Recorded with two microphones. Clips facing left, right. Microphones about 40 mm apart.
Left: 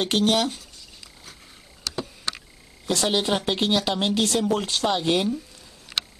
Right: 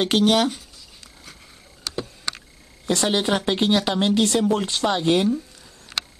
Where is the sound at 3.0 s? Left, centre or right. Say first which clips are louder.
Right 1 dB; centre.